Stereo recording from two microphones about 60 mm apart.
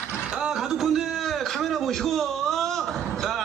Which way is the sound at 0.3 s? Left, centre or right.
Centre.